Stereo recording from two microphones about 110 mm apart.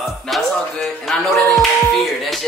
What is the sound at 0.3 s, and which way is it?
Speech, centre (ahead or behind).